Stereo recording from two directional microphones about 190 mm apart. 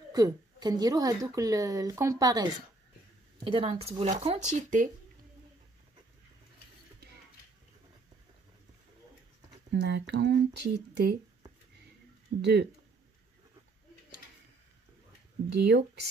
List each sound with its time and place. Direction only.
0.1 s a woman's voice: 20° right (ahead or behind); by 4.8 s 40° right (ahead or behind)
9.8 s speech: 65° right (ahead or behind)
12.4 s speech: 60° right (ahead or behind)
15.5 s speech: 60° right (ahead or behind)